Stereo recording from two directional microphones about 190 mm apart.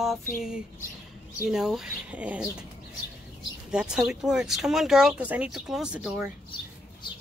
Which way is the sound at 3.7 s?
5° right (ahead or behind).